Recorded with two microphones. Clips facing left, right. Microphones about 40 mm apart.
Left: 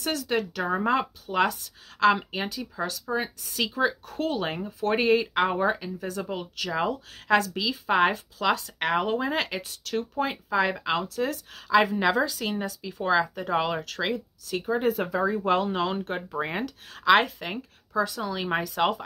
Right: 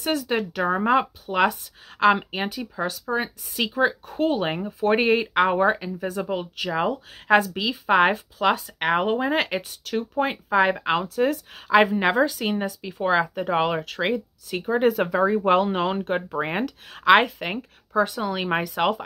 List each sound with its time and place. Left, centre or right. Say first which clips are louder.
0.0 s speech: right 3 dB; right
14.8 s speech: right 7 dB; right